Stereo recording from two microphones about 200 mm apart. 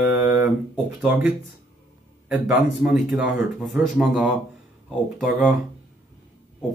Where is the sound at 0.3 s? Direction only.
10° right (ahead or behind).